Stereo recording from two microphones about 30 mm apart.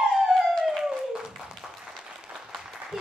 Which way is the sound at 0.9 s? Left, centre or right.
Right.